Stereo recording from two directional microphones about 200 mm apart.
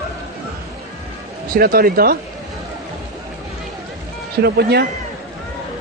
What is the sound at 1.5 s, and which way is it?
Speech, 45° right (ahead or behind).